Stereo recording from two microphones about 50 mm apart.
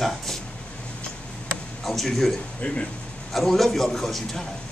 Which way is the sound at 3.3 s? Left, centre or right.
Centre.